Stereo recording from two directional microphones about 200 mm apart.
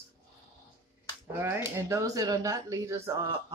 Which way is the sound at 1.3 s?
10° right (ahead or behind).